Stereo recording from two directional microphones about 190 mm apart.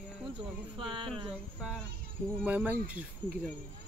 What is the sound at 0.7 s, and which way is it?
Speech, 25° right (ahead or behind).